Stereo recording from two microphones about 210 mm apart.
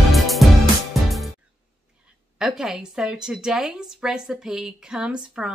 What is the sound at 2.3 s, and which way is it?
Speech, 5° right (ahead or behind).